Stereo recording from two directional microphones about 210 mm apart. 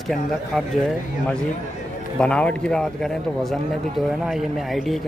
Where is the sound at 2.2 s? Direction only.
5° left (ahead or behind).